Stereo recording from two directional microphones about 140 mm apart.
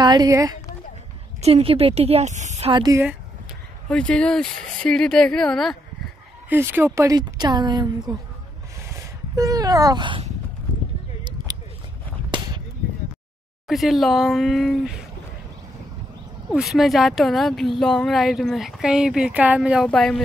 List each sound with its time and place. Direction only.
0.0 s speech: 30° right (ahead or behind)
1.4 s a woman's voice: 45° right (ahead or behind)
2.7 s speech: 30° right (ahead or behind)
3.9 s a woman's voice: 10° left (ahead or behind)
6.5 s speech: 15° right (ahead or behind)
9.3 s speech: 25° right (ahead or behind)
13.7 s a woman's voice: centre (ahead or behind)
16.4 s a woman's voice: centre (ahead or behind)
19.9 s a woman's voice: 5° left (ahead or behind)